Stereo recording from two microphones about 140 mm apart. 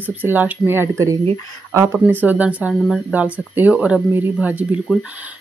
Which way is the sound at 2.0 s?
10° right (ahead or behind).